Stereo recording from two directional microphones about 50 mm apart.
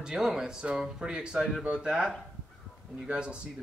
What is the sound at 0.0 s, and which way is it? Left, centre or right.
Speech, centre.